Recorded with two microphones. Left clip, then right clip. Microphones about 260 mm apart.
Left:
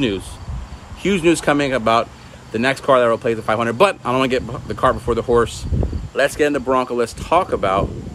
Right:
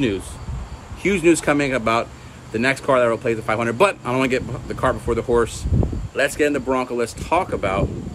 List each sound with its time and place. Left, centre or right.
1.0 s speech: centre